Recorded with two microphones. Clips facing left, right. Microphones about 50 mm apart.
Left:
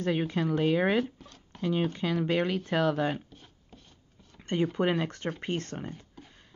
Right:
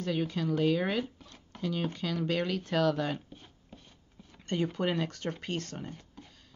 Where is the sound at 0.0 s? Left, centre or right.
Left.